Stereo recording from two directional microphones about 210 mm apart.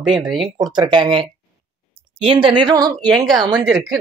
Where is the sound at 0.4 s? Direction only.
20° right (ahead or behind).